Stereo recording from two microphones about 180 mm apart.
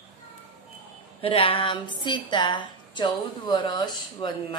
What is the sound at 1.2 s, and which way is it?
A woman's voice, 30° left (ahead or behind).